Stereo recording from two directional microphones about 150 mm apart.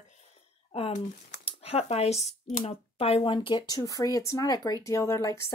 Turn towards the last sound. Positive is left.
turn(degrees=20)  # may be behind; listen again after turning